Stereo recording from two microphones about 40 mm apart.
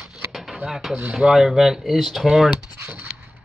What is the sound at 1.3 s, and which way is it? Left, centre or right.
Speech, centre.